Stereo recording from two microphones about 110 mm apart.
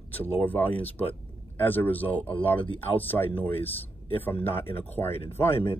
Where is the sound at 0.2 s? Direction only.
15° left (ahead or behind).